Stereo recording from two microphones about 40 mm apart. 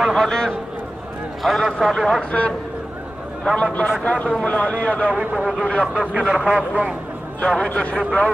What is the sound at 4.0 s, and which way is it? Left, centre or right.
Speech, left.